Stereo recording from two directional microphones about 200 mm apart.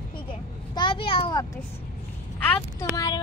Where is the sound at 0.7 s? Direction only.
25° left (ahead or behind).